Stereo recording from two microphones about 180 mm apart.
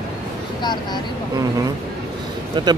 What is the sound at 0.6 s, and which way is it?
Speech, 25° left (ahead or behind).